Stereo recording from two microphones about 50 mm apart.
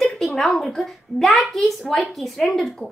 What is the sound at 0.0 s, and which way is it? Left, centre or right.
A child's voice, centre.